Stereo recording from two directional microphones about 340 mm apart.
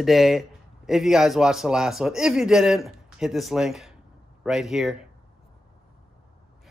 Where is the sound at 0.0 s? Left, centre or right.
Centre.